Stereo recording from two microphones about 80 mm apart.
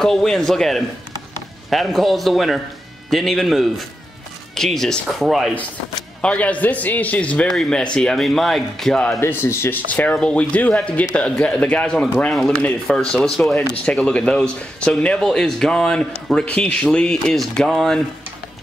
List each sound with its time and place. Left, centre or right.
0.0 s speech: centre
6.2 s a man's voice: centre
7.4 s speech: centre
9.2 s a man's voice: left
9.8 s a man's voice: centre